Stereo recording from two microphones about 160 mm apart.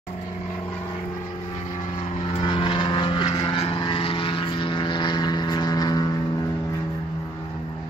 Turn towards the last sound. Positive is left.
turn(degrees=25)  # may be behind; listen again after turning